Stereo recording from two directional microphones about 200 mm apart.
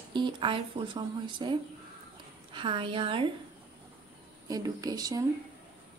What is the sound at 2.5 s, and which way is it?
Speech, 25° right (ahead or behind).